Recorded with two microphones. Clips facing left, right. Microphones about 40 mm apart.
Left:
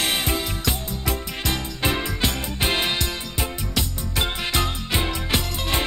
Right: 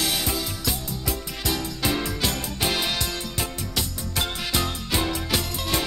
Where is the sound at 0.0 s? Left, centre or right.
Left.